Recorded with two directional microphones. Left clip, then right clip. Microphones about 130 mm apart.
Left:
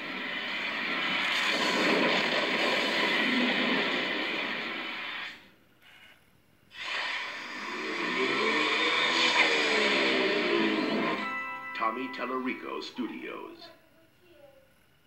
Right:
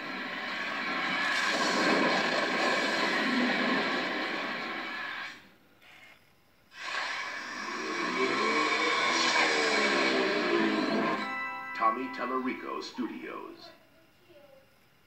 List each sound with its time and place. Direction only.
0.0 s vehicle: 5° left (ahead or behind)
4.6 s a sound: 5° left (ahead or behind)
6.9 s a sound: 5° left (ahead or behind)
8.9 s music: 15° left (ahead or behind)
9.2 s music: 5° left (ahead or behind)
11.0 s music: centre (ahead or behind)
12.9 s speech: centre (ahead or behind)